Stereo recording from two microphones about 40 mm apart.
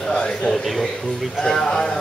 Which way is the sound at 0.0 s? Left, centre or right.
Left.